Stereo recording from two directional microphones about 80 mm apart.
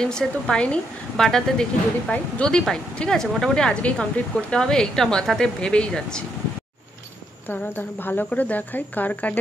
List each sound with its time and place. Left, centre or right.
0.0 s speech: centre
7.4 s speech: left